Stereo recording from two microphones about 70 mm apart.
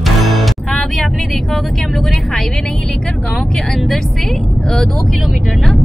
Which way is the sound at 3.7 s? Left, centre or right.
Centre.